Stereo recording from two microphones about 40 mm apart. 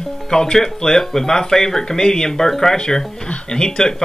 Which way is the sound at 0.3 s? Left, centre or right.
Centre.